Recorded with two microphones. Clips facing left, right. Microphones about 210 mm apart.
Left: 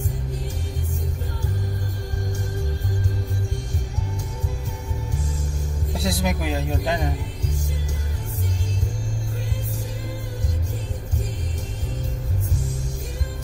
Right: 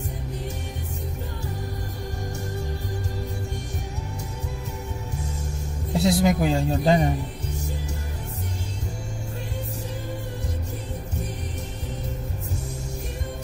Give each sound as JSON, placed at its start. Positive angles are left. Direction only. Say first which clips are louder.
{"t": 5.9, "sound": "speech", "louder": "right 6 dB", "side_deg": -25}